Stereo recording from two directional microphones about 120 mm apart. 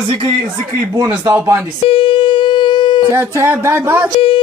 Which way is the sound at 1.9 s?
45° left (ahead or behind).